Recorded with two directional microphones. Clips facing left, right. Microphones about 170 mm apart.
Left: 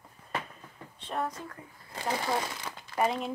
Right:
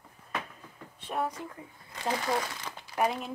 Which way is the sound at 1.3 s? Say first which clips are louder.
Right 1 dB; 15° right (ahead or behind).